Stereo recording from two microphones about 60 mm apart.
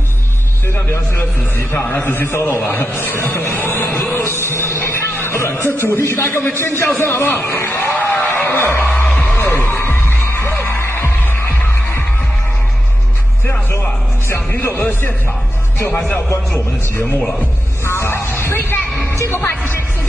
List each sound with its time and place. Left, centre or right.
1.6 s a man's voice: left
5.4 s a man's voice: left
8.5 s music: left
13.5 s music: left
16.3 s a man's voice: left
17.8 s a sound: left
19.1 s music: left